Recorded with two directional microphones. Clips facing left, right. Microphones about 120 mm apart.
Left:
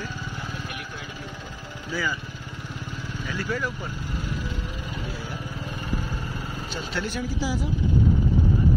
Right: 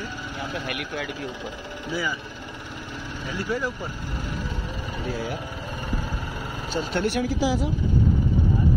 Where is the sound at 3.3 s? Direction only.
25° right (ahead or behind).